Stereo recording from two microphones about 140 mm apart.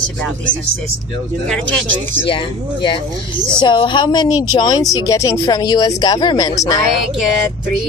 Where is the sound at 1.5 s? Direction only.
10° left (ahead or behind).